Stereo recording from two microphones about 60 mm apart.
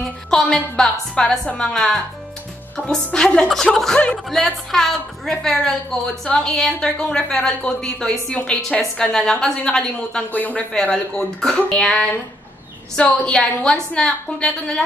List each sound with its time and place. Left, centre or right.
0.0 s a woman's voice: centre
10.3 s speech: left
10.7 s a woman's voice: centre